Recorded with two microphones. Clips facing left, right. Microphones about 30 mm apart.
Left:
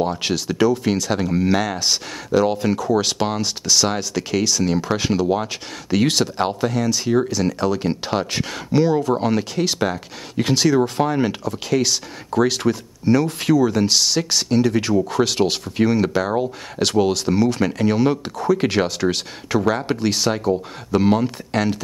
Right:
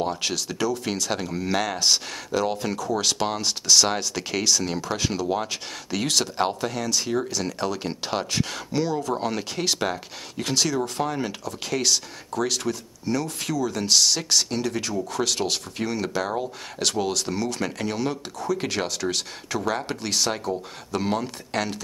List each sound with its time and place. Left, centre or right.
0.2 s speech: centre
0.8 s speech: centre
4.8 s speech: centre
10.3 s speech: centre
12.3 s speech: left
13.7 s speech: centre
14.8 s speech: left; by 21.8 s centre